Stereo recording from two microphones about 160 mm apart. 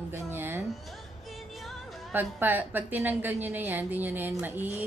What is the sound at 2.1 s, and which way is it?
A woman's voice, 10° right (ahead or behind).